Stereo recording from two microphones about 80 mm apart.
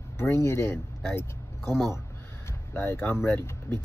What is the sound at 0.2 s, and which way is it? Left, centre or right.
Speech, left.